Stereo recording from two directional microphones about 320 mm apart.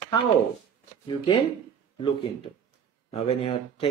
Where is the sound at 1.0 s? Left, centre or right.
Centre.